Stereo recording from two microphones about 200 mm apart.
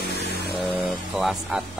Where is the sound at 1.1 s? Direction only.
5° right (ahead or behind).